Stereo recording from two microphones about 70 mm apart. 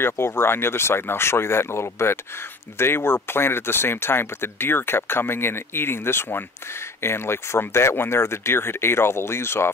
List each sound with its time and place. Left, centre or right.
0.0 s speech: left